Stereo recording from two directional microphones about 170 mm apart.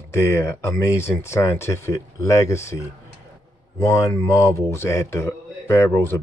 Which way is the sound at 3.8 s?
20° left (ahead or behind).